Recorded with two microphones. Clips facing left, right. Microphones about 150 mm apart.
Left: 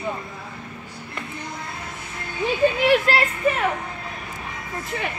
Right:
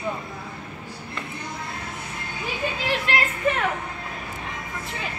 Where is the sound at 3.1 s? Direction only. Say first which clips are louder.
Left 4 dB; 40° left (ahead or behind).